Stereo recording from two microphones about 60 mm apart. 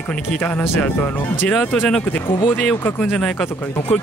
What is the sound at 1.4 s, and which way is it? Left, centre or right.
Speech, centre.